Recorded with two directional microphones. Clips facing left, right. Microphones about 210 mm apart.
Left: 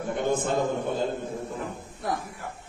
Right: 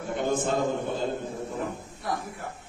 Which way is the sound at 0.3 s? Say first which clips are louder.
Even; 55° left (ahead or behind).